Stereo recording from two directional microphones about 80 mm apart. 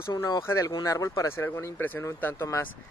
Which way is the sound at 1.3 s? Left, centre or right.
Left.